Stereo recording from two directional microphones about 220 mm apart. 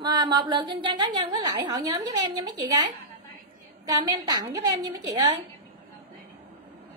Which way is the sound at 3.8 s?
15° right (ahead or behind).